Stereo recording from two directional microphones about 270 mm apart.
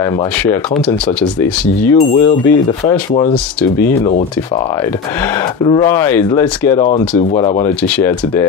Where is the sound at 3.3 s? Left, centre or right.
Centre.